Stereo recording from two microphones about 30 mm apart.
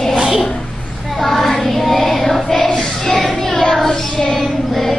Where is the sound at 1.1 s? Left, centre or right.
Centre.